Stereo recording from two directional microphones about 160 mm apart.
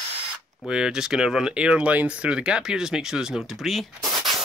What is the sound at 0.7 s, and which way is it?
Speech, 5° right (ahead or behind).